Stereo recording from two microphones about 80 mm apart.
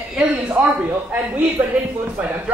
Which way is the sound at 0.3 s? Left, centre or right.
Right.